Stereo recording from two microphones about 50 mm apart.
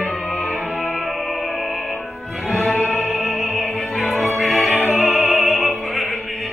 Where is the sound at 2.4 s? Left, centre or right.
Centre.